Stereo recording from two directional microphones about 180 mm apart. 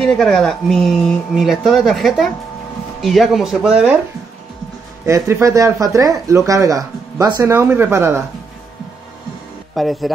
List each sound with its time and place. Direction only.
0.0 s speech: centre (ahead or behind)
5.0 s speech: 15° right (ahead or behind)
9.8 s speech: centre (ahead or behind)